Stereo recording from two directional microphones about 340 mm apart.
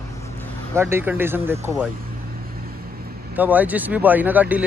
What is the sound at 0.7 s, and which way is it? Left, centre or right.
Speech, centre.